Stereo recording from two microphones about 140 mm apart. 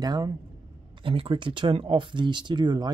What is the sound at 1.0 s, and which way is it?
Speech, 40° right (ahead or behind).